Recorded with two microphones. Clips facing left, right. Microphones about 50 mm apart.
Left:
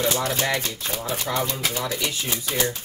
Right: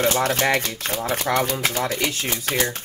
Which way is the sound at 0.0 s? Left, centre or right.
Right.